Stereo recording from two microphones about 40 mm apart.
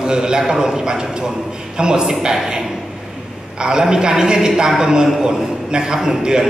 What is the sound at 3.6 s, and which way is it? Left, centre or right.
A man's voice, centre.